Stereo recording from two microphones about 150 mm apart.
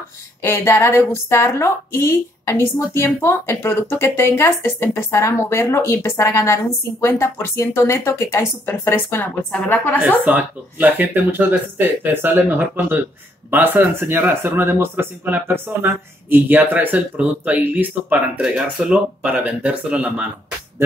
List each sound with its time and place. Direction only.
0.4 s a woman's voice: 20° left (ahead or behind)
9.9 s speech: 10° right (ahead or behind)